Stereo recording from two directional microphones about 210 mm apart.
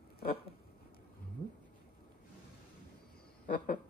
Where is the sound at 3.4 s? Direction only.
45° left (ahead or behind).